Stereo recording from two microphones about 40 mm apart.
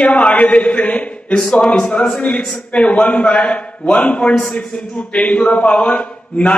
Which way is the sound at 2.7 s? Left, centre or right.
Left.